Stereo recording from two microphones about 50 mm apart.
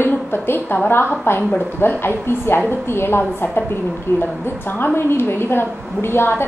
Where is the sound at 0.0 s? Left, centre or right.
Left.